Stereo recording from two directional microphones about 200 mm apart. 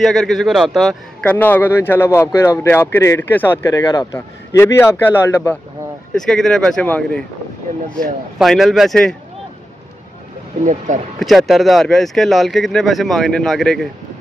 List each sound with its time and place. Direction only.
0.0 s a man's voice: centre (ahead or behind)
8.4 s speech: centre (ahead or behind)
10.6 s speech: 40° right (ahead or behind)
11.1 s speech: centre (ahead or behind)